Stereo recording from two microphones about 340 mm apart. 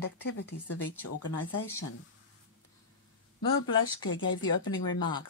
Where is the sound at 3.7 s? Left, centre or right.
Left.